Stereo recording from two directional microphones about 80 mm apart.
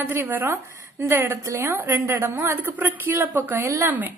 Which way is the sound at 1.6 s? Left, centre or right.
Right.